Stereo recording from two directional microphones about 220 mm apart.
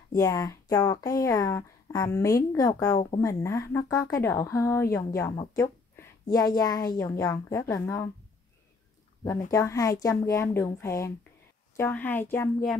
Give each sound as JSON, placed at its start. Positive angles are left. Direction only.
{"t": 0.1, "sound": "a woman's voice", "side_deg": 15}
{"t": 9.5, "sound": "a woman's voice", "side_deg": 15}